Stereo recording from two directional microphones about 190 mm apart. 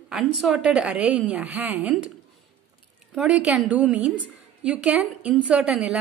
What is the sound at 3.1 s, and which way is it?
A woman's voice, 5° right (ahead or behind).